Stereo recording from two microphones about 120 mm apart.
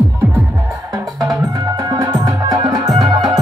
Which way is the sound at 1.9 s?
30° right (ahead or behind).